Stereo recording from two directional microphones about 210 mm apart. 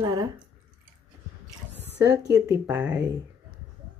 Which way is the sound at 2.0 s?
15° right (ahead or behind).